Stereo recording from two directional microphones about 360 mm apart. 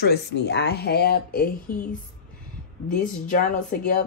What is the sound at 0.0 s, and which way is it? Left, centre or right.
Speech, left.